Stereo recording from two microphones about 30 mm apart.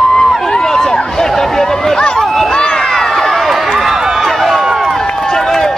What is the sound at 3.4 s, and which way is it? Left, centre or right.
Run, centre.